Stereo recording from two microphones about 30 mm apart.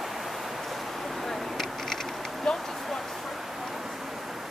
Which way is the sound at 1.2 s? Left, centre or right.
Centre.